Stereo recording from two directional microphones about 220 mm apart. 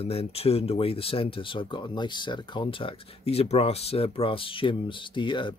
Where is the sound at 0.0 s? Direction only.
25° left (ahead or behind).